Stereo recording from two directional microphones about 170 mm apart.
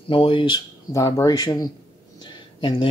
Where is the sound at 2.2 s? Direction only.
30° left (ahead or behind).